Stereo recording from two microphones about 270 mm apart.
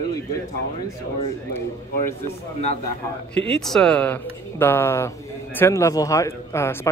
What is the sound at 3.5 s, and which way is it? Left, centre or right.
Speech, centre.